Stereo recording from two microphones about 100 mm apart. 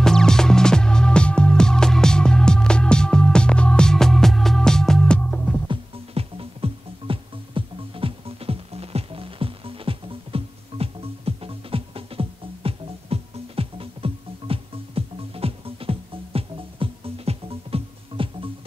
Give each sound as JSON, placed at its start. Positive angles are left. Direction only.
{"t": 0.0, "sound": "music", "side_deg": 5}
{"t": 5.7, "sound": "music", "side_deg": -70}